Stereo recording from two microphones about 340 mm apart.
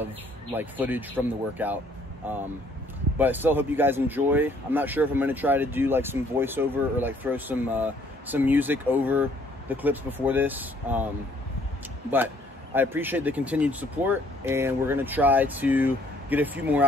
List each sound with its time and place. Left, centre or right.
0.6 s speech: centre
12.7 s speech: centre